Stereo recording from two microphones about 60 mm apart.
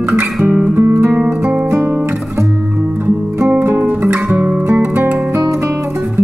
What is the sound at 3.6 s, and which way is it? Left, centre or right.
Music, right.